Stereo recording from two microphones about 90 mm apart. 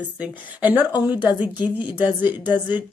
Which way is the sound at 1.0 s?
20° right (ahead or behind).